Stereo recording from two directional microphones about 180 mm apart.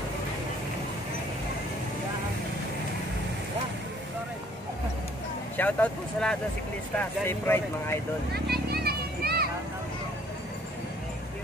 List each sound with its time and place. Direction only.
5.6 s speech: 10° left (ahead or behind)
8.3 s children playing: 60° right (ahead or behind)